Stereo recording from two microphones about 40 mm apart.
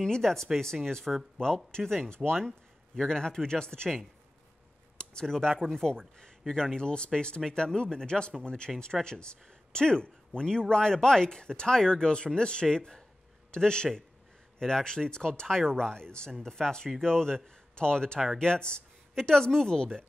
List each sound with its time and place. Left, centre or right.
0.0 s speech: centre
1.4 s speech: left
1.8 s speech: centre
3.0 s speech: centre
5.2 s a man's voice: centre